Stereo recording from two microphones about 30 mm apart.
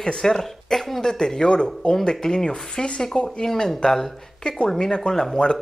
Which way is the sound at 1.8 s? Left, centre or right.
Left.